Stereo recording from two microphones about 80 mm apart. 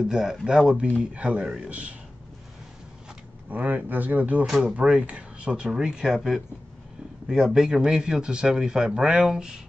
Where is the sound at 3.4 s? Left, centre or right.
Right.